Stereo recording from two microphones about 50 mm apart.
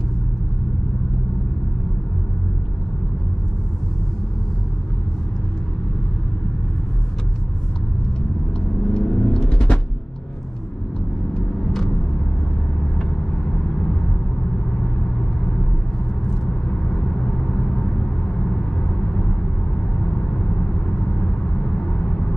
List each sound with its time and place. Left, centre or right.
8.5 s vehicle: centre
11.3 s vehicle: centre